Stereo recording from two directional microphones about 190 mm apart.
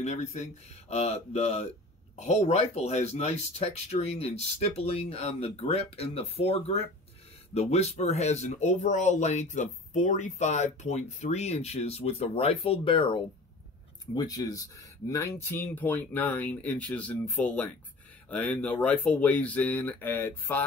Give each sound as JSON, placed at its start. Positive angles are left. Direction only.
{"t": 0.0, "sound": "speech", "side_deg": 35}